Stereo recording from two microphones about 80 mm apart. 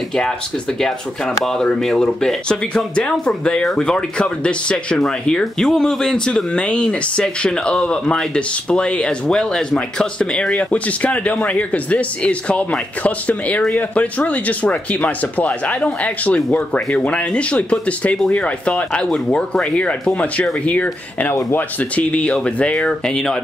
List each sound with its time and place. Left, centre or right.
0.7 s speech: centre